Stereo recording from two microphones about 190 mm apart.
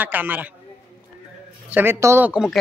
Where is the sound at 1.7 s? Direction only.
10° right (ahead or behind).